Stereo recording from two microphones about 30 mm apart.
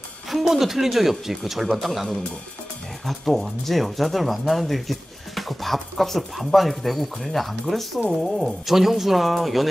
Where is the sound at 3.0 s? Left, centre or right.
Centre.